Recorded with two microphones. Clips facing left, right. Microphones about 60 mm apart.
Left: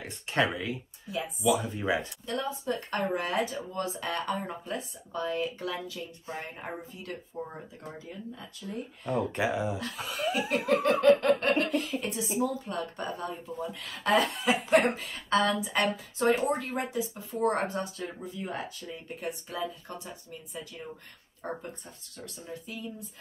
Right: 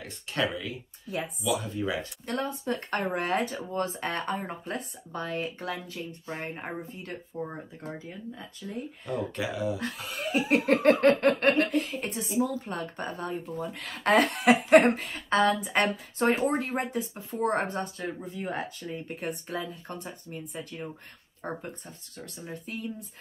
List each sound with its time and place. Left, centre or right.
0.0 s speech: left
2.2 s speech: right
4.7 s speech: right
9.0 s speech: left
10.7 s speech: right
14.9 s speech: right
21.4 s speech: right
22.5 s speech: right